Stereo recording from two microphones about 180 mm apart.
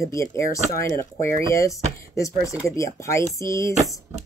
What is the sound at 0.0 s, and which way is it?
Speech, 15° left (ahead or behind).